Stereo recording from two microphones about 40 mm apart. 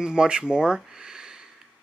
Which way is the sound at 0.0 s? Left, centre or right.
Right.